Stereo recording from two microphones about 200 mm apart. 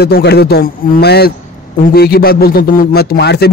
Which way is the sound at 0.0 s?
55° left (ahead or behind).